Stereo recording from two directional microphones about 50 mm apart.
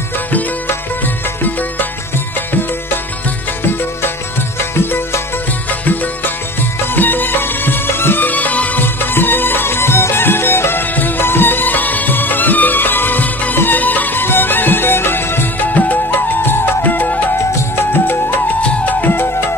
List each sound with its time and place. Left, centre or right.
0.7 s music: left
4.6 s music: left
5.7 s music: left
8.8 s music: left
15.7 s music: left
18.0 s music: left
18.6 s music: left